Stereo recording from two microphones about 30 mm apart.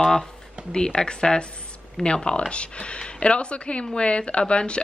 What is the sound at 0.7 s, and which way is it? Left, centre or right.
Speech, left.